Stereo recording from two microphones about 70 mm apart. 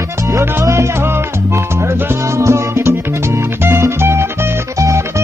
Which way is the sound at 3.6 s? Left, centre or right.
Right.